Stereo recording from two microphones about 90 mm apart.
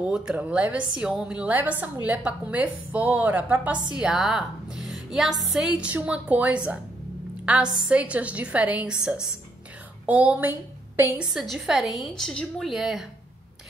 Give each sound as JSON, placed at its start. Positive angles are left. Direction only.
{"t": 0.1, "sound": "a woman's voice", "side_deg": -15}
{"t": 5.6, "sound": "a woman's voice", "side_deg": -10}
{"t": 11.3, "sound": "a woman's voice", "side_deg": -5}